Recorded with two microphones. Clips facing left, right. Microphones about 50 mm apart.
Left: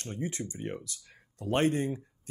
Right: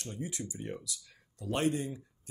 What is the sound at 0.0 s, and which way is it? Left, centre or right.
Speech, left.